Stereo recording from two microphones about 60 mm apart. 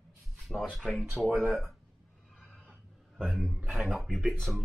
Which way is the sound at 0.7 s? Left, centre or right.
Centre.